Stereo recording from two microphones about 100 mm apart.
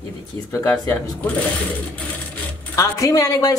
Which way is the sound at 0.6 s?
15° left (ahead or behind).